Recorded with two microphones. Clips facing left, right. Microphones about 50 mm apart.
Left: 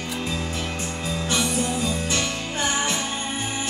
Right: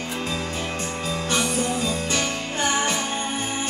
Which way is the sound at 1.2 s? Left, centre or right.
Right.